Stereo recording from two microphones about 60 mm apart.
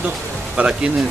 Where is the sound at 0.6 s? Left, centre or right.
Right.